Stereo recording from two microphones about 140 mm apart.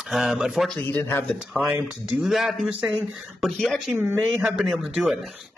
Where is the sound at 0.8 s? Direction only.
15° left (ahead or behind).